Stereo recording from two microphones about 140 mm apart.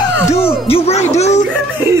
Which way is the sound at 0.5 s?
45° left (ahead or behind).